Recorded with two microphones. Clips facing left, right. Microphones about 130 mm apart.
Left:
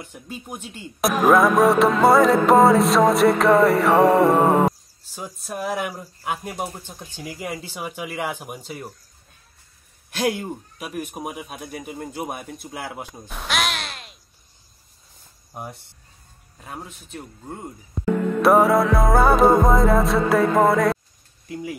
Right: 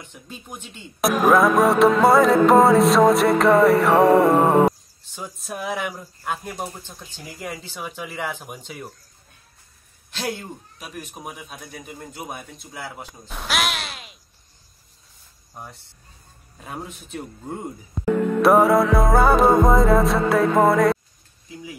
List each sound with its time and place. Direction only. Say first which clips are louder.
0.7 s speech: right 1 dB; 5° left (ahead or behind)
10.2 s speech: left 6 dB; 15° left (ahead or behind)
10.8 s speech: left 6 dB; 50° left (ahead or behind)
12.8 s speech: left 1 dB; 15° left (ahead or behind)
13.3 s a sound: even; centre (ahead or behind)
15.5 s speech: left 5 dB; 15° left (ahead or behind)
16.5 s speech: right 2 dB; 5° right (ahead or behind)